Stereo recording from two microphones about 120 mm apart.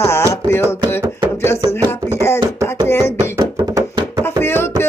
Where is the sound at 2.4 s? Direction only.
40° right (ahead or behind).